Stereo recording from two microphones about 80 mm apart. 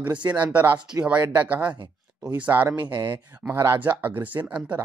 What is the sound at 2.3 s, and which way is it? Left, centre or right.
Speech, right.